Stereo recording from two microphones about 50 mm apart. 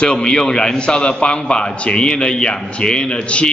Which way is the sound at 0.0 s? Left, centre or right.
Centre.